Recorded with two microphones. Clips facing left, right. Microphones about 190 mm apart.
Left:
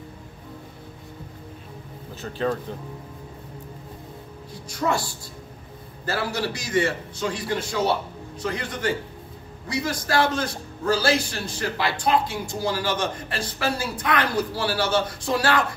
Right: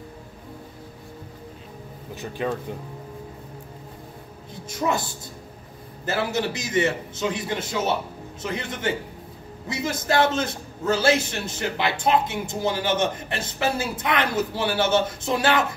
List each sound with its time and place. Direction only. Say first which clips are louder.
2.1 s speech: left 2 dB; 15° right (ahead or behind)
4.6 s a man's voice: even; 20° right (ahead or behind)